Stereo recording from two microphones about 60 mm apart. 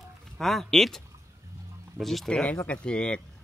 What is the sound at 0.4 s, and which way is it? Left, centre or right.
Speech, centre.